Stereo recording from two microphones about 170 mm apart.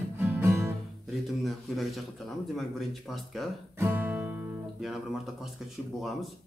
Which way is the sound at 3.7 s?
10° right (ahead or behind).